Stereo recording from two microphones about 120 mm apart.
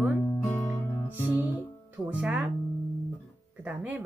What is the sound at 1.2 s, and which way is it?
Music, 15° right (ahead or behind).